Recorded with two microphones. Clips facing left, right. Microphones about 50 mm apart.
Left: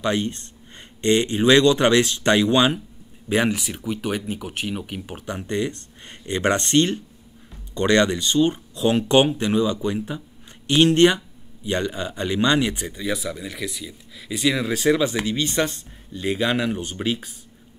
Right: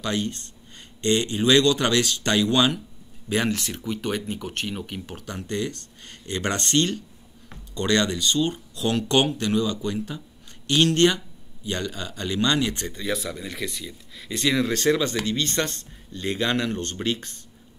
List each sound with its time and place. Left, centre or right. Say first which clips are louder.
0.0 s speech: left 4 dB; left
12.8 s speech: left 2 dB; centre